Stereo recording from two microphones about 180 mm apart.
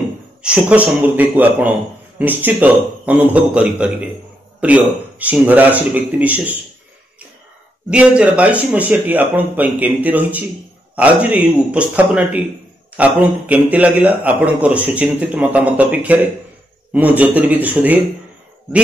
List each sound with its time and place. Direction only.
0.4 s a man's voice: 5° right (ahead or behind)
7.9 s speech: 5° right (ahead or behind)